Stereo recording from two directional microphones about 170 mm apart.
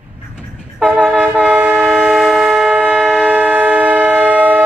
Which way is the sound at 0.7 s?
Centre (ahead or behind).